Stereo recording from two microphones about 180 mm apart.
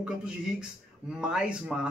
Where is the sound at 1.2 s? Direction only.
5° right (ahead or behind).